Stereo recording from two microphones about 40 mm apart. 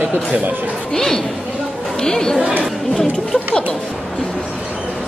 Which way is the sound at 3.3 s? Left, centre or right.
Left.